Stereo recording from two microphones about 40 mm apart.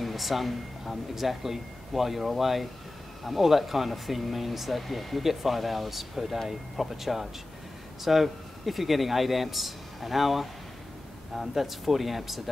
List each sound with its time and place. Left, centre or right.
0.0 s speech: centre